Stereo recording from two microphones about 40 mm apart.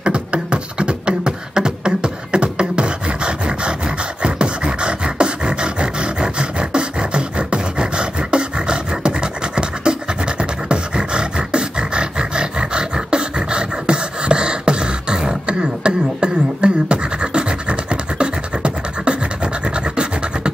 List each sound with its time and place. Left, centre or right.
0.0 s beatboxing: right